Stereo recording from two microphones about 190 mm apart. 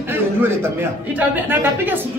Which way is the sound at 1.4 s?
10° right (ahead or behind).